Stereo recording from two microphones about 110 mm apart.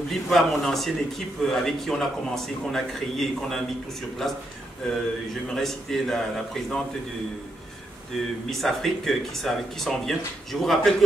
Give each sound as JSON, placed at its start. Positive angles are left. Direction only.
{"t": 0.3, "sound": "a man's voice", "side_deg": 0}
{"t": 5.5, "sound": "a man's voice", "side_deg": 5}
{"t": 8.5, "sound": "a man's voice", "side_deg": 0}